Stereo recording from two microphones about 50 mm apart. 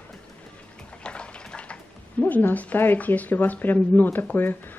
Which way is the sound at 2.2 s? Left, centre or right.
Left.